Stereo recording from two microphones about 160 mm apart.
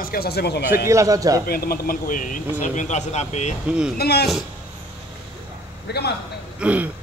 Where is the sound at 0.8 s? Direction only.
20° right (ahead or behind).